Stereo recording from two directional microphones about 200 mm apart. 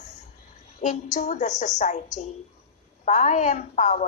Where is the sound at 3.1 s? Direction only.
40° left (ahead or behind).